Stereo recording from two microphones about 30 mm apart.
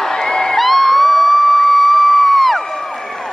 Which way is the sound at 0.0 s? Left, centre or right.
Left.